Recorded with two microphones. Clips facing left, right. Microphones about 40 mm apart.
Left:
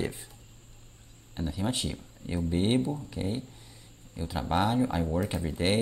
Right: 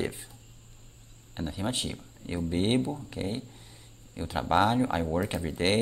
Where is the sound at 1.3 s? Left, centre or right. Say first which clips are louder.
Left 1 dB; centre.